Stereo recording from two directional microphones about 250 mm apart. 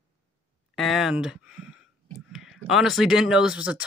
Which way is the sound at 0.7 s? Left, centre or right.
Centre.